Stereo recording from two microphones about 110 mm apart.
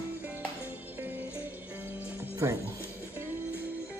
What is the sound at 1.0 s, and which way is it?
Music, 15° right (ahead or behind).